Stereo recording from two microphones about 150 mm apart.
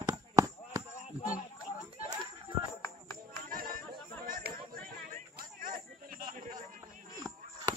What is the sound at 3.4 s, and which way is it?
Chatter, 70° right (ahead or behind).